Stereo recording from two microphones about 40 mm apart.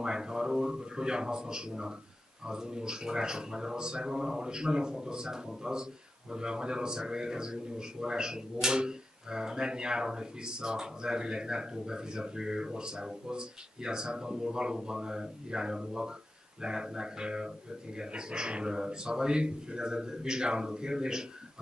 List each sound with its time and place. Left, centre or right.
0.0 s a man's voice: centre